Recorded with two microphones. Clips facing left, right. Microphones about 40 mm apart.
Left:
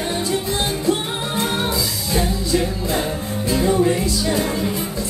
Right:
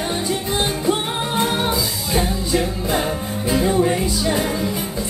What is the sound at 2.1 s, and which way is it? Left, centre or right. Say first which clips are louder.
Music: even; centre.